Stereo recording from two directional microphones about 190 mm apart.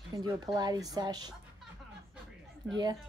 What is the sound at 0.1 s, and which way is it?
Speech, 20° right (ahead or behind).